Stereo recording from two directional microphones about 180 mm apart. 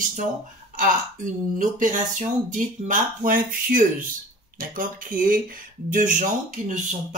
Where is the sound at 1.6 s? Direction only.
45° right (ahead or behind).